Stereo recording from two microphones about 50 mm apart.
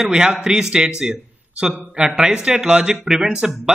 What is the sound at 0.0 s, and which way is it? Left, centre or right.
A man's voice, centre.